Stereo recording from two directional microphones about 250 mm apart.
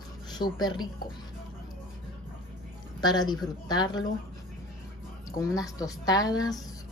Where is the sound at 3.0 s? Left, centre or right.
Centre.